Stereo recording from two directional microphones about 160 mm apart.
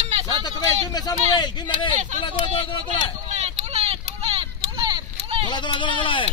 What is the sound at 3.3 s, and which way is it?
Vehicle, 45° right (ahead or behind).